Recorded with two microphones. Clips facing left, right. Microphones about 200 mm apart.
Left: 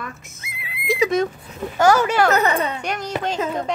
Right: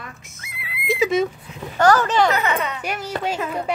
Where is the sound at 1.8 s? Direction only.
10° left (ahead or behind).